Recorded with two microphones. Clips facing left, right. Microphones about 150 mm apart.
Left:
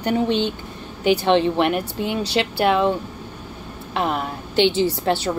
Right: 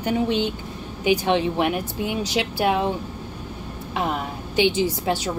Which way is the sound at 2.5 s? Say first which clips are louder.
Left 3 dB; 75° left (ahead or behind).